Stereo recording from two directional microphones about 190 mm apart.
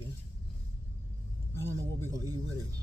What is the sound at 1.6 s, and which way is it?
Speech, 20° right (ahead or behind).